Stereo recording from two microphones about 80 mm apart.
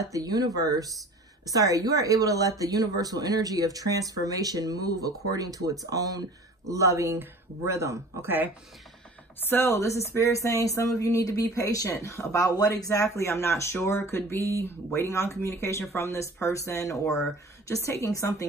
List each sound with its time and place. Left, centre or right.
0.0 s a woman's voice: right
9.4 s speech: left